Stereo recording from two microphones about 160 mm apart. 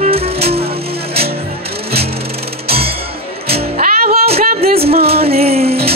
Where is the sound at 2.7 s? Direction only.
40° right (ahead or behind).